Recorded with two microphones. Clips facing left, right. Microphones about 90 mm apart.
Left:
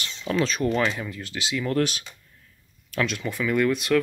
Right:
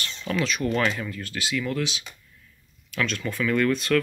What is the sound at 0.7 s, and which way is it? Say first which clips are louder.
Speech: even; 15° left (ahead or behind).